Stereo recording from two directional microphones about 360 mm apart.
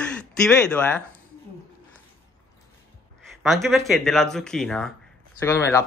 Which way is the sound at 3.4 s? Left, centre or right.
Centre.